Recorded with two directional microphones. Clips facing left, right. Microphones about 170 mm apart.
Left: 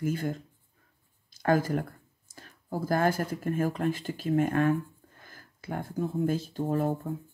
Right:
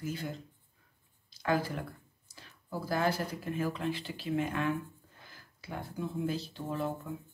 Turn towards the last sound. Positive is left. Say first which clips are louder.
# left 7 dB
turn(degrees=45)  # may be behind; listen again after turning